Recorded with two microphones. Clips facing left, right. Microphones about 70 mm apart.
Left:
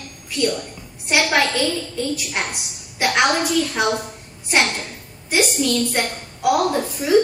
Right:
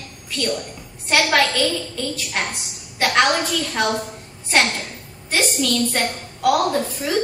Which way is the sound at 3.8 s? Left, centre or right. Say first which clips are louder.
Right 1 dB; centre.